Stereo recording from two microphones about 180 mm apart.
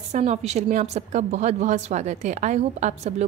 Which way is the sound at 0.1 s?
35° right (ahead or behind).